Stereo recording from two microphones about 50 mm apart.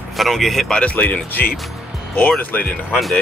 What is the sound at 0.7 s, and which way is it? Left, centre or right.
Speech, left.